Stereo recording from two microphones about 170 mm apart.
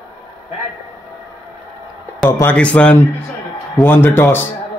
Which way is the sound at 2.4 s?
10° left (ahead or behind).